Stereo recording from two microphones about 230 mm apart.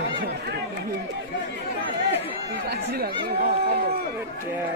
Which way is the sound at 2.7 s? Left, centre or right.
Right.